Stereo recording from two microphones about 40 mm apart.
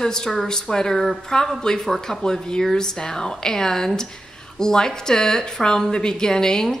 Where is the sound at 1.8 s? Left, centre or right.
Centre.